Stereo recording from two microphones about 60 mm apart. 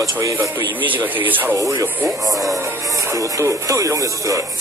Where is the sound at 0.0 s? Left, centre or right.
Right.